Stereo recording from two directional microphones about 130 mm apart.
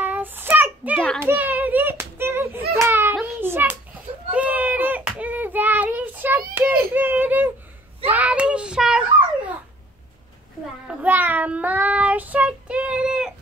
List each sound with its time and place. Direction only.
0.0 s child singing: 15° right (ahead or behind)
0.9 s a child's voice: 5° left (ahead or behind)
1.2 s a sound: 15° right (ahead or behind)
4.3 s child singing: 10° right (ahead or behind)
10.9 s child singing: 10° right (ahead or behind)